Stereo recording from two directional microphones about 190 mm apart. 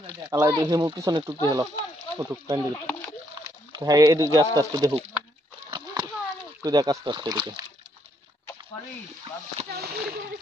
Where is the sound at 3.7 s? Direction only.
20° right (ahead or behind).